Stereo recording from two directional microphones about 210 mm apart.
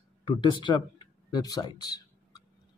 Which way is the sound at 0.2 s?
20° left (ahead or behind).